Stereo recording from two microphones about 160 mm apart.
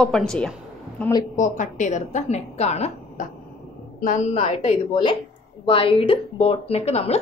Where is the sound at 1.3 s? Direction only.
50° left (ahead or behind).